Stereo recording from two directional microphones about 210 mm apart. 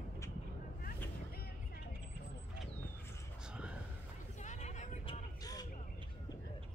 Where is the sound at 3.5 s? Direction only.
5° right (ahead or behind).